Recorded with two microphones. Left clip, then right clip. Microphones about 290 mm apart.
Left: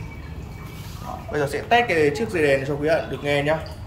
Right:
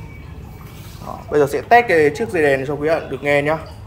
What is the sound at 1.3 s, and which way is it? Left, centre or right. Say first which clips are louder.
A man's voice: right 7 dB; right.